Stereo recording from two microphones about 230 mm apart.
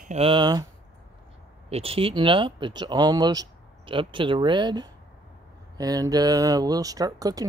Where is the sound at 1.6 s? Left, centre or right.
Right.